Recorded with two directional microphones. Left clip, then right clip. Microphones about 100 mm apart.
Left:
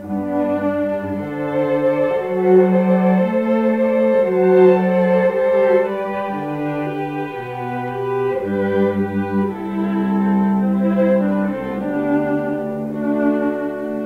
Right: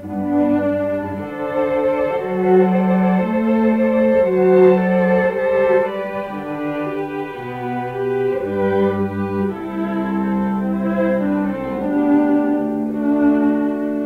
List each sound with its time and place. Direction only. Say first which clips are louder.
0.3 s brass instrument: right 2 dB; 30° right (ahead or behind)
1.6 s music: left 1 dB; 30° right (ahead or behind)
8.2 s music: even; 25° right (ahead or behind)
9.9 s music: left 3 dB; 30° right (ahead or behind)